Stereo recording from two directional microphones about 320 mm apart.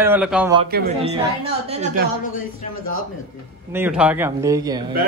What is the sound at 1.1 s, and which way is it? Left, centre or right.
Speech, centre.